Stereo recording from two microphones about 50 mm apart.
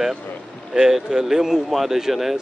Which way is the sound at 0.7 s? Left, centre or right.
Centre.